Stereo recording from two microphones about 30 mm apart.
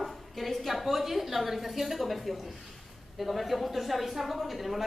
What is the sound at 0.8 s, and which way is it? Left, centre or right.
A woman's voice, centre.